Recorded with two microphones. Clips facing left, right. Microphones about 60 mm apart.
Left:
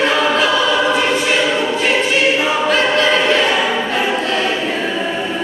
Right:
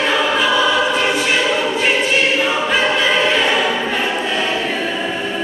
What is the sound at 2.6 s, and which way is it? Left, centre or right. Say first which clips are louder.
Choir: left 2 dB; centre.